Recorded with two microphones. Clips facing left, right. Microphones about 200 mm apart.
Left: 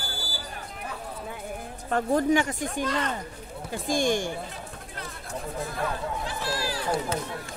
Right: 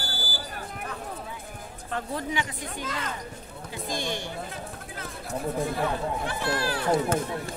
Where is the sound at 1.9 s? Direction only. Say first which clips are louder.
Left 8 dB; 45° left (ahead or behind).